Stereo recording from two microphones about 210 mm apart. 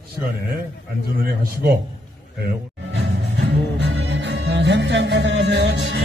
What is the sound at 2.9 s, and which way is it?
Music, 55° right (ahead or behind).